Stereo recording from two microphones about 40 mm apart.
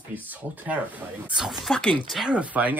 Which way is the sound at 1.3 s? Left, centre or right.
Centre.